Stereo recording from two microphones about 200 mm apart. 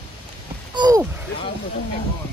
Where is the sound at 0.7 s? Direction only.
20° right (ahead or behind).